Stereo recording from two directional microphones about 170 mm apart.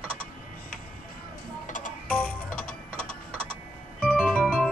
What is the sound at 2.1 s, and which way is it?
Music, 10° left (ahead or behind).